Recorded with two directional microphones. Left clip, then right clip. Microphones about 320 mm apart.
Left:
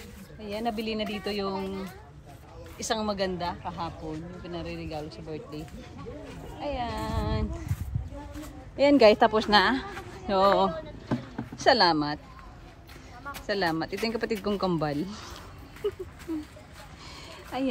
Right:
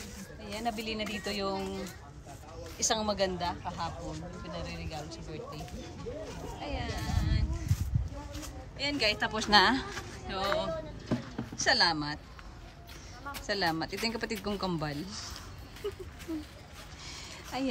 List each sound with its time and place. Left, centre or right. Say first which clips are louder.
0.4 s speech: left 4 dB; centre
2.8 s speech: left 1 dB; centre
6.6 s speech: left 8 dB; centre
8.7 s a woman's voice: left 12 dB; centre
10.6 s vehicle: left 8 dB; centre
13.2 s speech: left 3 dB; centre
17.1 s a sound: left 3 dB; centre